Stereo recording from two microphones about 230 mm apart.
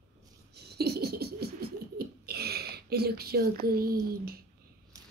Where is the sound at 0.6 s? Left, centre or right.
Right.